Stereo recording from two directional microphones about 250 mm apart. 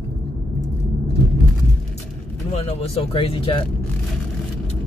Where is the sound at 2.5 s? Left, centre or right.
Left.